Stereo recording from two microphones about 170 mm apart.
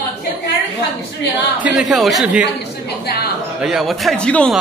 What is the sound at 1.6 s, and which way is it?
Speech, centre (ahead or behind).